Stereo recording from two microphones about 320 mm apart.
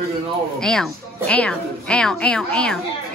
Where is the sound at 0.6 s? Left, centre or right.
Centre.